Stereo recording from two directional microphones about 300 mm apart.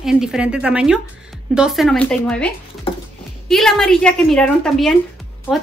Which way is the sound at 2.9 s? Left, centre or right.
Centre.